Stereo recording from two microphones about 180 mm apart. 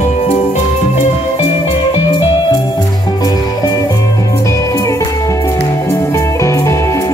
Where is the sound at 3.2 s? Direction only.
20° left (ahead or behind).